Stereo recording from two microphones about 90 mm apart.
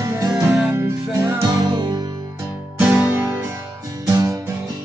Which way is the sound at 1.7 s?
65° right (ahead or behind).